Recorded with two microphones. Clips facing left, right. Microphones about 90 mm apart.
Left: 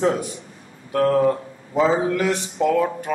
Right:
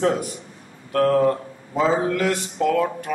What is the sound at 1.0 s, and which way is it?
A man's voice, 5° left (ahead or behind).